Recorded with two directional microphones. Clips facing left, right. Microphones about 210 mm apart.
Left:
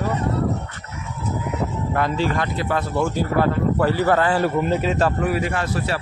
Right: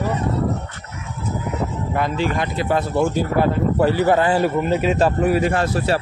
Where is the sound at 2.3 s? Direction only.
20° right (ahead or behind).